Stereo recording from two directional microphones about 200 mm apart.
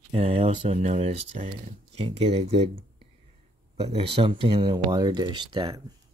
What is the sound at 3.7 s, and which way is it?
Speech, 30° right (ahead or behind).